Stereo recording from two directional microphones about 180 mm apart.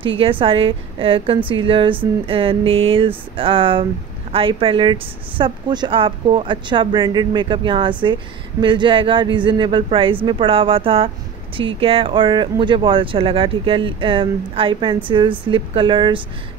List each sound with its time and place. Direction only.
0.2 s a woman's voice: 30° right (ahead or behind)